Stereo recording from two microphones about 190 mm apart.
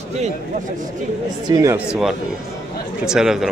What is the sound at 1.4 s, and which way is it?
Speech, 20° right (ahead or behind).